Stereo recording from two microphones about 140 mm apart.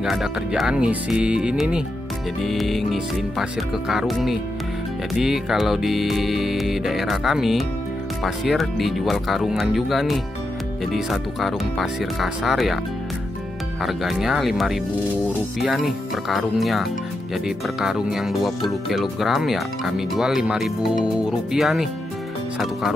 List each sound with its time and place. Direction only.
0.0 s music: 5° right (ahead or behind)
13.8 s music: centre (ahead or behind)